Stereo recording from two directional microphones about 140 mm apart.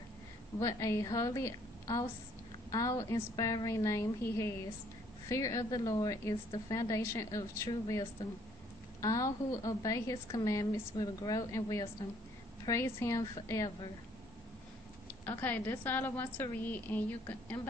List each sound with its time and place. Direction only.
0.6 s a woman's voice: 20° left (ahead or behind)
9.0 s a woman's voice: 25° left (ahead or behind)
12.6 s a woman's voice: 20° left (ahead or behind)
15.2 s a woman's voice: 10° left (ahead or behind)